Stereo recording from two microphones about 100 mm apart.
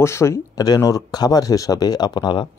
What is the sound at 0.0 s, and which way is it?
Speech, 25° left (ahead or behind).